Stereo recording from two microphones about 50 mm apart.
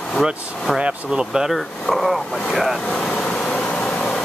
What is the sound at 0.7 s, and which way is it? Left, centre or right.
Speech, centre.